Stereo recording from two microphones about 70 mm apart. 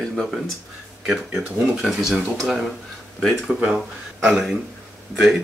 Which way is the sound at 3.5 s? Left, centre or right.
Centre.